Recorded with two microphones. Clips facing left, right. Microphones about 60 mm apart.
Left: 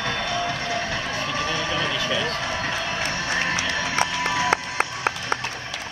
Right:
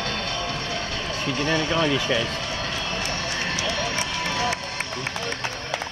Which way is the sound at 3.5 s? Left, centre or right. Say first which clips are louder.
Left 1 dB; left.